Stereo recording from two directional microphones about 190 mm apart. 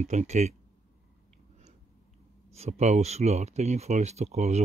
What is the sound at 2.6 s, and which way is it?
Speech, 35° right (ahead or behind).